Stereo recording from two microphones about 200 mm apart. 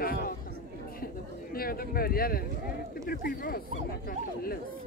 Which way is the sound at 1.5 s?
50° left (ahead or behind).